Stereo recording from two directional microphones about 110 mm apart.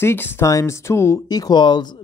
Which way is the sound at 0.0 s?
20° left (ahead or behind).